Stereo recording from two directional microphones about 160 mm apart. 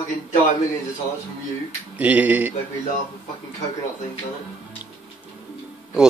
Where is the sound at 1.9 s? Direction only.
10° right (ahead or behind).